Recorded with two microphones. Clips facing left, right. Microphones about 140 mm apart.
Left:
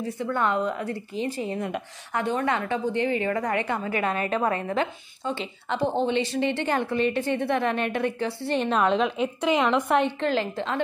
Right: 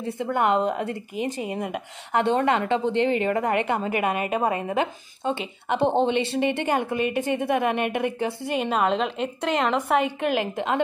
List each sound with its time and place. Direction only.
0.3 s a woman's voice: 20° right (ahead or behind)
2.3 s a woman's voice: 25° right (ahead or behind)
5.8 s speech: 65° right (ahead or behind)
6.3 s a woman's voice: 20° right (ahead or behind)
8.5 s a woman's voice: 5° right (ahead or behind)
10.2 s a woman's voice: 15° right (ahead or behind)